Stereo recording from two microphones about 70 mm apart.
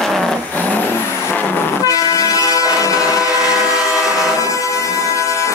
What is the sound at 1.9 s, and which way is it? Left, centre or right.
Train, left.